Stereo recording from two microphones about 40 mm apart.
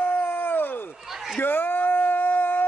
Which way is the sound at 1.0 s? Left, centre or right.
Centre.